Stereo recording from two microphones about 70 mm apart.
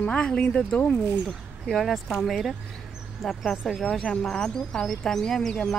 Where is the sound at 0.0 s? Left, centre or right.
Centre.